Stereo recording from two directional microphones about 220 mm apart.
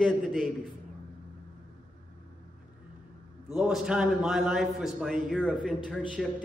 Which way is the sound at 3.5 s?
Centre (ahead or behind).